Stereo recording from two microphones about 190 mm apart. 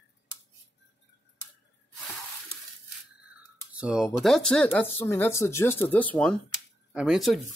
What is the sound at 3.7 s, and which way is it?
Speech, 5° right (ahead or behind).